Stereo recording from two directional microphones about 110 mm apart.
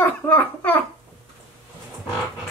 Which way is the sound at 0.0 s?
15° left (ahead or behind).